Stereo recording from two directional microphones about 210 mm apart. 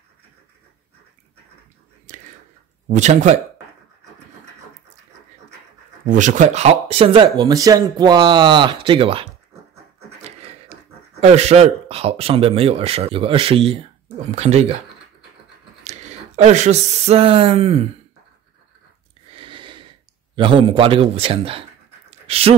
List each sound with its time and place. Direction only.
2.1 s whispering: 35° right (ahead or behind)
2.9 s speech: 35° right (ahead or behind)
6.0 s speech: 35° right (ahead or behind)
15.8 s speech: 35° right (ahead or behind)
19.3 s a sound: 25° right (ahead or behind)
20.3 s speech: 25° right (ahead or behind)